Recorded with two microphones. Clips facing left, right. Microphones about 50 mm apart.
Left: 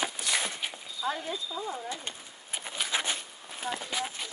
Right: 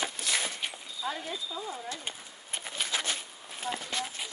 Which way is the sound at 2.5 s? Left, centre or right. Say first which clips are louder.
Left 1 dB; centre.